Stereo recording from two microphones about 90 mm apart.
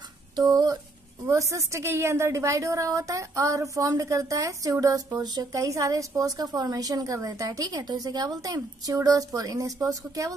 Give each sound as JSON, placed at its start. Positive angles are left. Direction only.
{"t": 0.4, "sound": "speech", "side_deg": -45}
{"t": 1.3, "sound": "a woman's voice", "side_deg": -35}
{"t": 5.5, "sound": "a woman's voice", "side_deg": -35}